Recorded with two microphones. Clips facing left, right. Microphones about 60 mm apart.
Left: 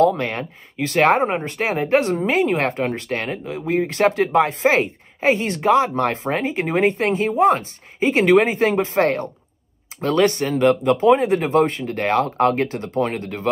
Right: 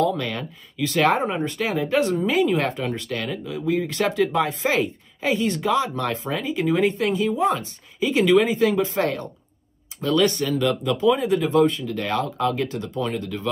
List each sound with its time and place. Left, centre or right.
0.0 s speech: left